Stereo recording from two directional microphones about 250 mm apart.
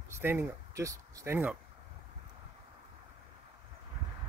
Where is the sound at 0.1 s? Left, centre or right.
Centre.